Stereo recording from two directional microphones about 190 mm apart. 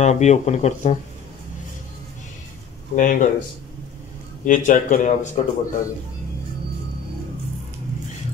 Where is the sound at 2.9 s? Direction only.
45° left (ahead or behind).